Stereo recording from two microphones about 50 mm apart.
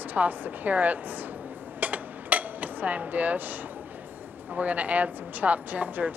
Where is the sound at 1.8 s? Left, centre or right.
Right.